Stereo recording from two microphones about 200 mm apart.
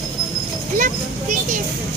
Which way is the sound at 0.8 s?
40° right (ahead or behind).